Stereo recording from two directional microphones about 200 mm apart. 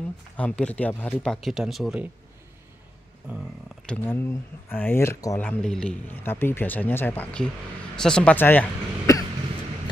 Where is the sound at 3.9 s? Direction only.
5° left (ahead or behind).